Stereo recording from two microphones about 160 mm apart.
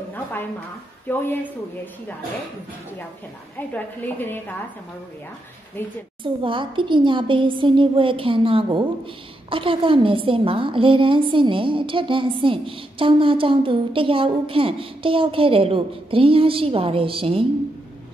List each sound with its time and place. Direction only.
1.1 s a woman's voice: 10° left (ahead or behind)
3.5 s a woman's voice: 10° left (ahead or behind)
5.8 s a woman's voice: 15° left (ahead or behind)
6.2 s a woman's voice: 30° right (ahead or behind)